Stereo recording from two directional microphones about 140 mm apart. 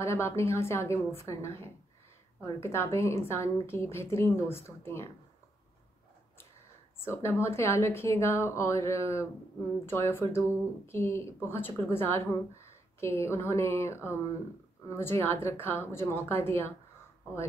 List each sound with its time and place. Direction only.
0.0 s a woman's voice: 20° left (ahead or behind)
7.1 s a woman's voice: 20° left (ahead or behind)